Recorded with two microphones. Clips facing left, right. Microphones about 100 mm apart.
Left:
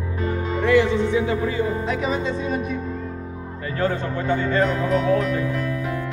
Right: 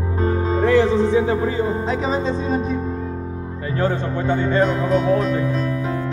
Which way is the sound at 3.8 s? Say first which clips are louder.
Right 2 dB; 25° right (ahead or behind).